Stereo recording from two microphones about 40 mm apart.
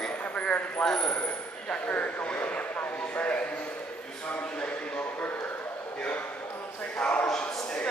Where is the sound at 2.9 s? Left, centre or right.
Left.